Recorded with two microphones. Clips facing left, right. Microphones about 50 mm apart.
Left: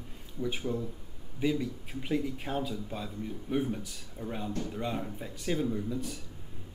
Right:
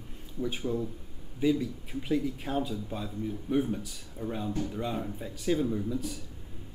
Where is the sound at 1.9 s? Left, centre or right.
Centre.